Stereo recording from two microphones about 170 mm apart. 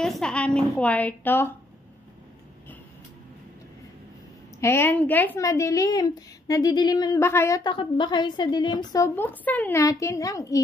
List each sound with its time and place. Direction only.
0.0 s a woman's voice: 5° left (ahead or behind)
4.6 s a woman's voice: 15° left (ahead or behind)